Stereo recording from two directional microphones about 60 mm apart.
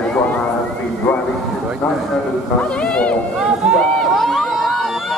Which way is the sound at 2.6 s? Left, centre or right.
Left.